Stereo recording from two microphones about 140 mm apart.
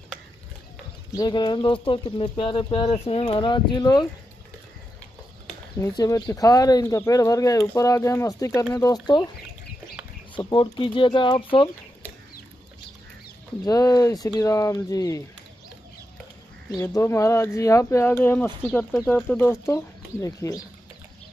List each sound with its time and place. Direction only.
1.1 s speech: 30° left (ahead or behind)
5.8 s speech: 25° left (ahead or behind)
10.3 s speech: 35° left (ahead or behind)
13.7 s speech: 25° left (ahead or behind)
16.7 s speech: 25° left (ahead or behind); by 19.4 s 5° left (ahead or behind)
19.4 s speech: 20° left (ahead or behind)